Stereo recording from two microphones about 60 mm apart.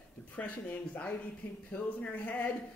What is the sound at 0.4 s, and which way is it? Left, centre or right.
A woman's voice, left.